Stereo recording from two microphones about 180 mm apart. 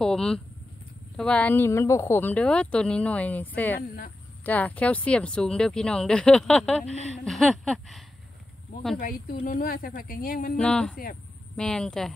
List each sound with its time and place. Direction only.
0.0 s a woman's voice: 5° left (ahead or behind)
8.9 s a woman's voice: 50° left (ahead or behind)
10.6 s speech: 5° left (ahead or behind)